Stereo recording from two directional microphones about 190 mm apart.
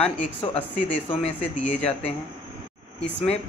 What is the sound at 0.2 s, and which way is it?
Speech, 40° left (ahead or behind).